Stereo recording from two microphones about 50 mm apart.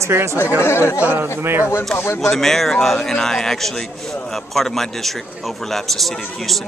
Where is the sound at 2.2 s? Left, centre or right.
Centre.